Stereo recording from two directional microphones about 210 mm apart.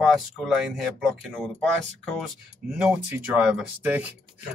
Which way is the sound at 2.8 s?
5° right (ahead or behind).